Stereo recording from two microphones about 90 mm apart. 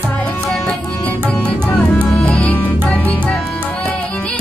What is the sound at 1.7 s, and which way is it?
Music, 15° left (ahead or behind).